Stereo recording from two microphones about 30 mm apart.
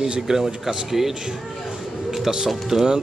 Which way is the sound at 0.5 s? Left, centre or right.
Centre.